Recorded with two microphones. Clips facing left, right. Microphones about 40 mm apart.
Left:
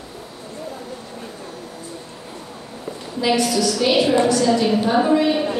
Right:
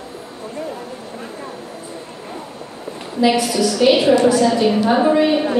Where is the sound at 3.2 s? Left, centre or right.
Centre.